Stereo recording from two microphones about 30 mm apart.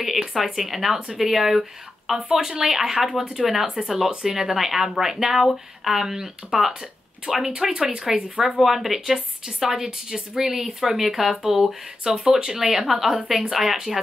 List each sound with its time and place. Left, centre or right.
0.0 s a sound: centre
0.6 s speech: centre
3.3 s speech: centre
3.6 s speech: centre
7.6 s speech: right
8.5 s speech: centre